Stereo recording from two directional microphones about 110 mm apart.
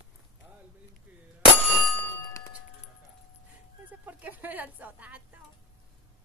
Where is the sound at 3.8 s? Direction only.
15° right (ahead or behind).